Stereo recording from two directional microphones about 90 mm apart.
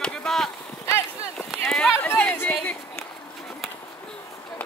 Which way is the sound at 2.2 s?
15° left (ahead or behind).